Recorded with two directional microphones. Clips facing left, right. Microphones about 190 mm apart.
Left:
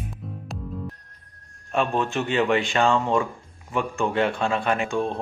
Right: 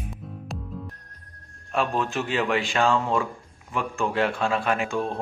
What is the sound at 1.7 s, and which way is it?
Speech, centre (ahead or behind).